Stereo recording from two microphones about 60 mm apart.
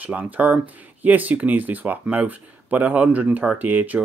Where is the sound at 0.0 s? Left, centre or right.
Right.